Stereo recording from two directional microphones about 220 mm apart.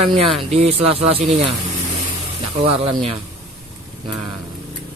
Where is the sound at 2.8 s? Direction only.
25° right (ahead or behind).